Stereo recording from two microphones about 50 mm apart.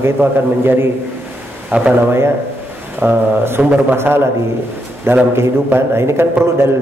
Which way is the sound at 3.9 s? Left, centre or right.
Right.